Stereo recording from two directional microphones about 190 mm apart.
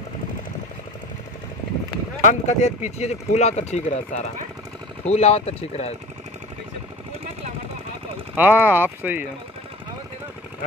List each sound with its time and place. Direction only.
2.2 s speech: 40° left (ahead or behind)
8.4 s speech: 10° right (ahead or behind)